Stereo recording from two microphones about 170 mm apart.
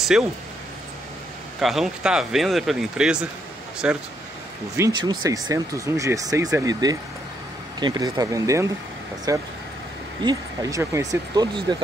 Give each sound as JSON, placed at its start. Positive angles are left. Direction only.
{"t": 0.0, "sound": "speech", "side_deg": 0}
{"t": 1.6, "sound": "speech", "side_deg": 0}
{"t": 4.7, "sound": "speech", "side_deg": -20}